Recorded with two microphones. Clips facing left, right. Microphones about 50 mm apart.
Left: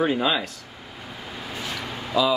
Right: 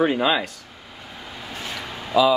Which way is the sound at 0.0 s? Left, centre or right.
Centre.